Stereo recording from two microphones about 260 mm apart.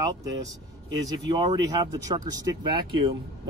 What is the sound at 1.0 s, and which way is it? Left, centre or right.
Speech, centre.